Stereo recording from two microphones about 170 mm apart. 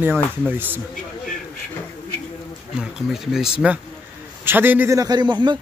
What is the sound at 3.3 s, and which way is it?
A man's voice, 5° right (ahead or behind).